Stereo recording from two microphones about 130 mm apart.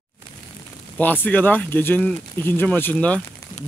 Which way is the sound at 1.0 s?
15° left (ahead or behind).